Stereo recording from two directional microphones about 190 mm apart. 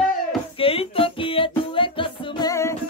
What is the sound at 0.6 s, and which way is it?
Music, 30° left (ahead or behind).